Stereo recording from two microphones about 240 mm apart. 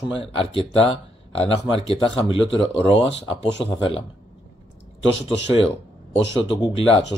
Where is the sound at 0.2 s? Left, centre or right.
Left.